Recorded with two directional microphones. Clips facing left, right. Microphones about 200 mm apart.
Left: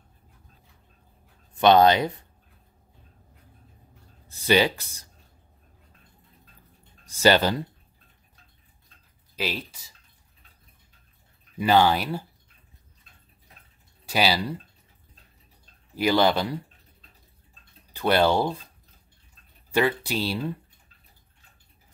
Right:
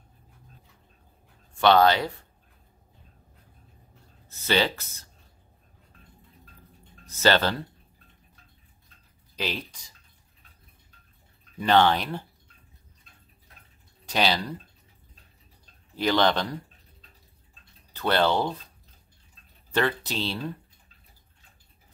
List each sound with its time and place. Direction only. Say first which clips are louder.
1.5 s speech: left 2 dB; 20° left (ahead or behind)
4.3 s speech: left 4 dB; 15° left (ahead or behind)
7.1 s speech: left 3 dB; 10° left (ahead or behind)
9.3 s speech: left 1 dB; 5° left (ahead or behind)
11.5 s speech: left 1 dB; 10° left (ahead or behind)
14.0 s speech: left 1 dB; 5° left (ahead or behind)
15.9 s speech: left 2 dB; 10° left (ahead or behind)
17.9 s speech: left 2 dB; 10° left (ahead or behind)
19.7 s speech: left 3 dB; 10° left (ahead or behind)